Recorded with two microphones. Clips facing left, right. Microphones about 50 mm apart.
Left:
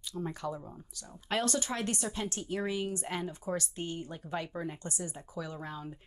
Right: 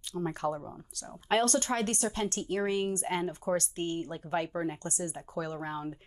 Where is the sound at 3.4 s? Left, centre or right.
Right.